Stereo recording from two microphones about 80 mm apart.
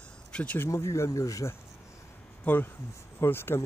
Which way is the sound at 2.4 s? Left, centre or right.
Left.